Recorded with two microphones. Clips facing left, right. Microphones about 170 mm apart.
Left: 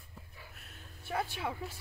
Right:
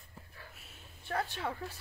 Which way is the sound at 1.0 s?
10° left (ahead or behind).